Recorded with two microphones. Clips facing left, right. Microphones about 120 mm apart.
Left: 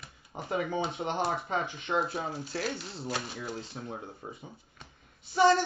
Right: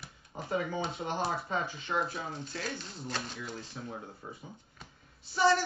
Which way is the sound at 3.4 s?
30° left (ahead or behind).